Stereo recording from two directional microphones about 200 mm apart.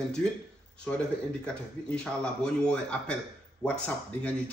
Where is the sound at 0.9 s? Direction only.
5° left (ahead or behind).